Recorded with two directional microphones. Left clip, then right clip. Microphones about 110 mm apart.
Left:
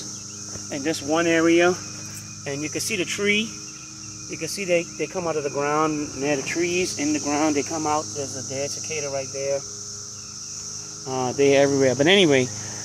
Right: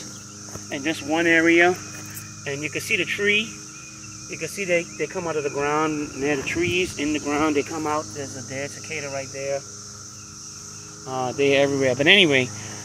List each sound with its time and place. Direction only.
0.7 s speech: 45° left (ahead or behind); by 3.4 s 75° left (ahead or behind)
4.3 s speech: 35° left (ahead or behind)
11.1 s speech: 55° left (ahead or behind)